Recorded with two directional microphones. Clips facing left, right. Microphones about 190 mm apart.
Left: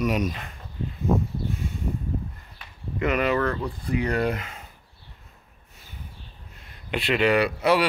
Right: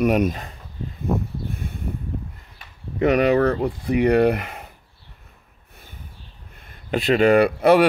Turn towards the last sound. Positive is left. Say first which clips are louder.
# right 6 dB
turn(degrees=-55)  # may be behind; listen again after turning